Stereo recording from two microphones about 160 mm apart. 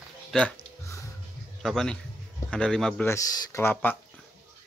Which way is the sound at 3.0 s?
20° left (ahead or behind).